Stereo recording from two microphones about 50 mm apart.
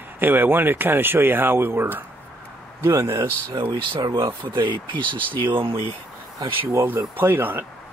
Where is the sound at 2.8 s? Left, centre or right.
Right.